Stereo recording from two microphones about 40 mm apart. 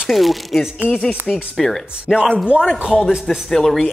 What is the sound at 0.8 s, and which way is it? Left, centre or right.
Speech, left.